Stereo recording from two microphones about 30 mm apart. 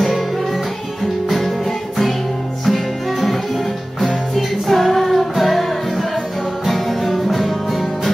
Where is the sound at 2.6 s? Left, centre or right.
Centre.